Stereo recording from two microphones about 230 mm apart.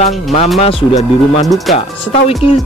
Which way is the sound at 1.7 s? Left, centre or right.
Left.